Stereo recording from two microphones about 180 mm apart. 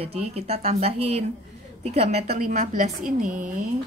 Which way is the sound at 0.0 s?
35° right (ahead or behind).